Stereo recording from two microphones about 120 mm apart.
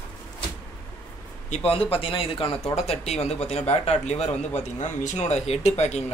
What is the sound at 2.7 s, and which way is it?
Speech, 60° left (ahead or behind).